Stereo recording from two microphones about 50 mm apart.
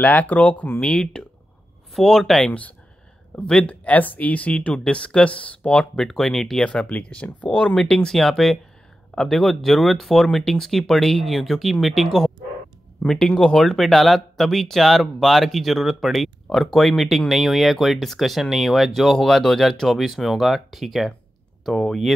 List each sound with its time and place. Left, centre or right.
0.0 s speech: left
2.0 s speech: centre
2.4 s speech: left
3.8 s speech: left
6.0 s speech: centre
6.6 s speech: centre
7.9 s speech: centre